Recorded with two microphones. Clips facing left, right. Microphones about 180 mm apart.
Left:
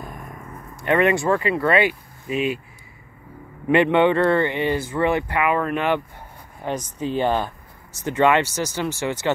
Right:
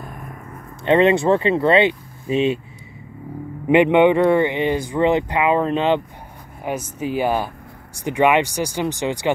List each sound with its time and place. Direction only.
0.8 s speech: 25° right (ahead or behind)
3.6 s speech: 15° right (ahead or behind)
6.6 s speech: 10° right (ahead or behind)